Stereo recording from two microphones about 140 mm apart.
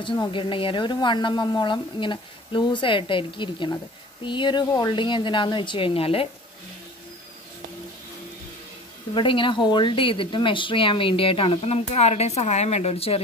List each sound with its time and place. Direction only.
0.0 s speech: 35° left (ahead or behind)
9.1 s speech: 35° left (ahead or behind)